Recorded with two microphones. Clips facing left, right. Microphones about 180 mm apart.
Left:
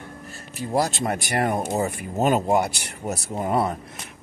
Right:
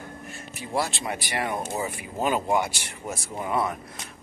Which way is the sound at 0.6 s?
40° left (ahead or behind).